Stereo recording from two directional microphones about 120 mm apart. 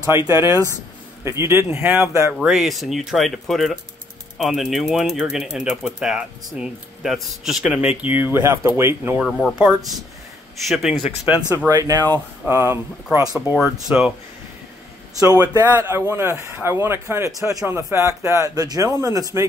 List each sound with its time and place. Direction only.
0.1 s speech: 20° right (ahead or behind)
2.4 s speech: 5° right (ahead or behind); by 9.2 s 20° right (ahead or behind)
9.2 s speech: 5° left (ahead or behind)
10.7 s speech: 5° right (ahead or behind)
11.4 s speech: 25° right (ahead or behind)
13.3 s speech: 5° right (ahead or behind)
15.3 s speech: 30° right (ahead or behind)